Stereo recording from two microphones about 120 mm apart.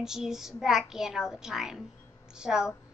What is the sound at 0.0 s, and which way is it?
A child's voice, 5° right (ahead or behind).